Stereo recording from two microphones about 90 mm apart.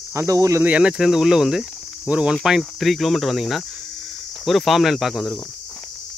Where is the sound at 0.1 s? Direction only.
35° right (ahead or behind).